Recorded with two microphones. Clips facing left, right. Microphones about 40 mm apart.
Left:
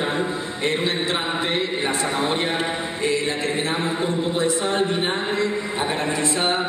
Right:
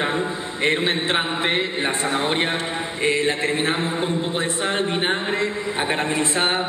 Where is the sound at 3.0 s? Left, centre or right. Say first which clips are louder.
Right 3 dB; right.